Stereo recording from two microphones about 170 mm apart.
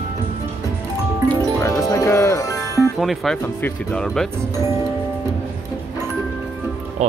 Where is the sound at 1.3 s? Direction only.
15° left (ahead or behind).